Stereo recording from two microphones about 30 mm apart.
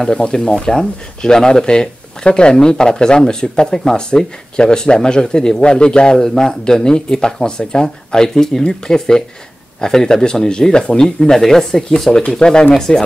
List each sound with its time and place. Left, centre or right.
0.1 s speech: left
6.2 s a man's voice: centre
12.3 s speech: left